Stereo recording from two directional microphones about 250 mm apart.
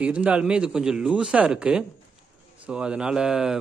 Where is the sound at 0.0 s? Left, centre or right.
Centre.